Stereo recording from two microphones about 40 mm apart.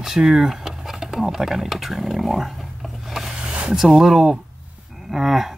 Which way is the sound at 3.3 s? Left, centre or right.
Right.